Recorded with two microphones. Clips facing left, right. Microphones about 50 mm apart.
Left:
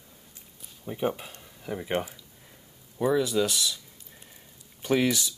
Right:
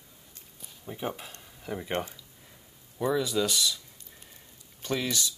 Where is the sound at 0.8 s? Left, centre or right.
Centre.